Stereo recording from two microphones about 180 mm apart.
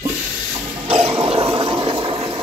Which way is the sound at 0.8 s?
30° right (ahead or behind).